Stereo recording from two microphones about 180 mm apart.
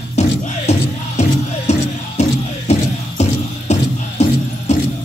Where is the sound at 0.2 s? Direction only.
40° left (ahead or behind).